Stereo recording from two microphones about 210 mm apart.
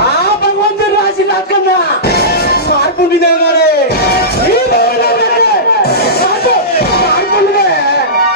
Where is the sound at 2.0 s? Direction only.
50° left (ahead or behind).